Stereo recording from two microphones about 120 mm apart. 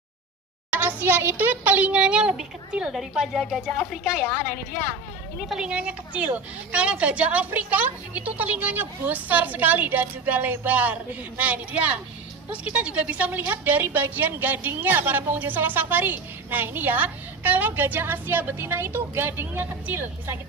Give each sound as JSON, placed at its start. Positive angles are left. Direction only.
{"t": 0.7, "sound": "a woman's voice", "side_deg": -15}
{"t": 5.5, "sound": "a woman's voice", "side_deg": -10}